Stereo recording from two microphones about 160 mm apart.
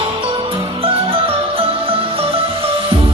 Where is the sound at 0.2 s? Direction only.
35° right (ahead or behind).